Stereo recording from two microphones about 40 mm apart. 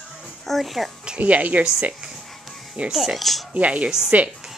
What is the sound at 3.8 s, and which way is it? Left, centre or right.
Speech, centre.